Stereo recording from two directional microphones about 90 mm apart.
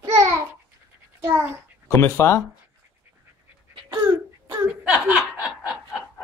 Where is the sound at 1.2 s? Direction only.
30° right (ahead or behind).